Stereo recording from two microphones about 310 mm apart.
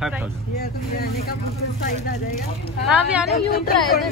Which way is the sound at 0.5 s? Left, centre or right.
Left.